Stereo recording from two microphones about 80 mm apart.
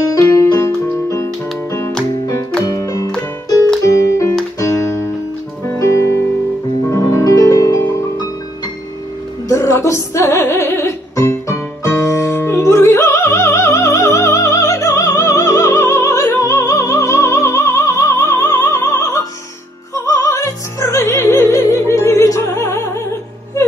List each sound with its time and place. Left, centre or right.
0.2 s music: left
5.8 s music: left
9.5 s music: left